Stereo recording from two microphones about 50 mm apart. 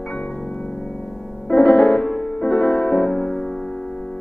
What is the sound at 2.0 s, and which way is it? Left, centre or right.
Music, centre.